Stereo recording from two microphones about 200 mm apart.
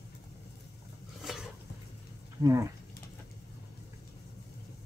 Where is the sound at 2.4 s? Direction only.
15° right (ahead or behind).